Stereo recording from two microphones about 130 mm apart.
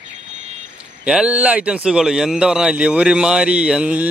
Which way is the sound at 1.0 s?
10° right (ahead or behind).